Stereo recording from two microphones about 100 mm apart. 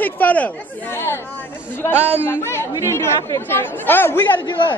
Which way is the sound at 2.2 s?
20° left (ahead or behind).